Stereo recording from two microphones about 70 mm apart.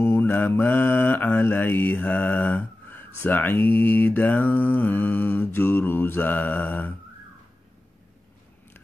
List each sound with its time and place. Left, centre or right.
0.0 s mantra: left